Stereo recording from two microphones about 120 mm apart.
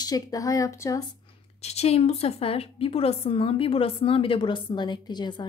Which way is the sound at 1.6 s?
60° left (ahead or behind).